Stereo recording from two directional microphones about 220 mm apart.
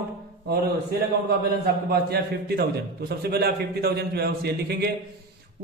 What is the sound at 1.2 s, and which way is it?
A man's voice, 45° right (ahead or behind).